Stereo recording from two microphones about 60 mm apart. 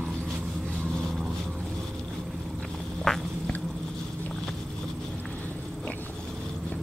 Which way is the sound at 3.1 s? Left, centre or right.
Centre.